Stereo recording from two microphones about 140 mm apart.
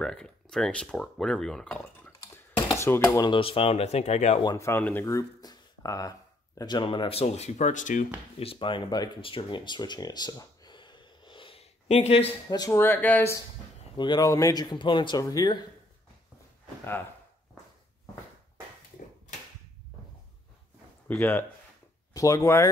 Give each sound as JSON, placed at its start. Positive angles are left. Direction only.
{"t": 0.0, "sound": "speech", "side_deg": 5}
{"t": 3.2, "sound": "speech", "side_deg": 35}
{"t": 4.6, "sound": "speech", "side_deg": 15}
{"t": 8.4, "sound": "speech", "side_deg": 40}
{"t": 12.4, "sound": "speech", "side_deg": 30}
{"t": 12.7, "sound": "speech", "side_deg": 15}
{"t": 13.9, "sound": "speech", "side_deg": 30}
{"t": 21.1, "sound": "speech", "side_deg": 15}